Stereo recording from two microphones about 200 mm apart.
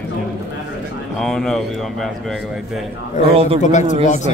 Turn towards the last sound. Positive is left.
turn(degrees=35)  # may be behind; listen again after turning